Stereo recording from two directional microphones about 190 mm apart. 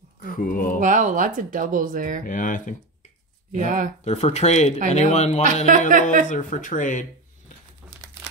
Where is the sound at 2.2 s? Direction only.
45° left (ahead or behind).